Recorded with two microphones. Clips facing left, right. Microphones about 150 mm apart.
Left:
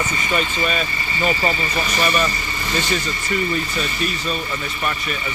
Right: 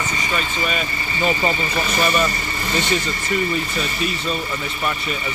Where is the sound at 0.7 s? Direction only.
20° right (ahead or behind).